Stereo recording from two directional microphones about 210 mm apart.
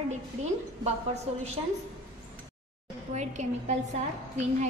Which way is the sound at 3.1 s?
35° right (ahead or behind).